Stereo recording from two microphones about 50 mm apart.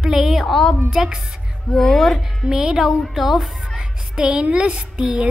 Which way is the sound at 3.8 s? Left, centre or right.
Right.